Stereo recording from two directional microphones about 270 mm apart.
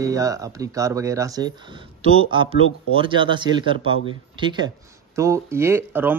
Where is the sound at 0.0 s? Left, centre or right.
Centre.